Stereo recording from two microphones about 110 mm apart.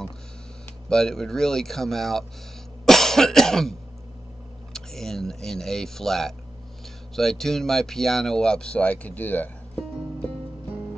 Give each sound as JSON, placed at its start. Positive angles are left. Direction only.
{"t": 0.8, "sound": "speech", "side_deg": 5}
{"t": 2.8, "sound": "cough", "side_deg": 5}
{"t": 4.7, "sound": "speech", "side_deg": 5}